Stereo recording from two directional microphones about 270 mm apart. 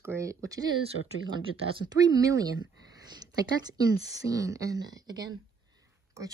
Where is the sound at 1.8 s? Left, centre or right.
Centre.